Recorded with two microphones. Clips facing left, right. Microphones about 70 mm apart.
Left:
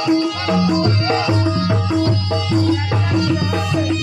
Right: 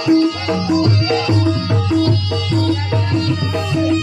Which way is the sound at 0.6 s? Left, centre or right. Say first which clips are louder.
Even; centre.